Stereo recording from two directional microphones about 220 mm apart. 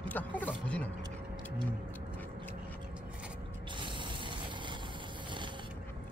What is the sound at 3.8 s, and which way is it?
Vehicle, 20° right (ahead or behind).